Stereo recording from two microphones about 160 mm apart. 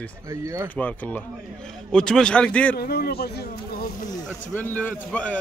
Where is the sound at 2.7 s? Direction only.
75° left (ahead or behind).